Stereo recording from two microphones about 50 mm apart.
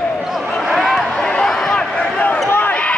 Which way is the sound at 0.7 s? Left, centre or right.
Centre.